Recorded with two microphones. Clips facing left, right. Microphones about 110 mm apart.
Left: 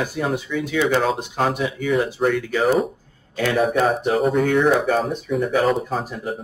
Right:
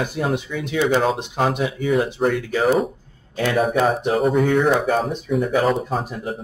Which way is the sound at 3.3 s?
Centre (ahead or behind).